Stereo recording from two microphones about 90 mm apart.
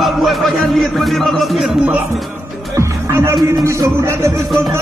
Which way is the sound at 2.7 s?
35° right (ahead or behind).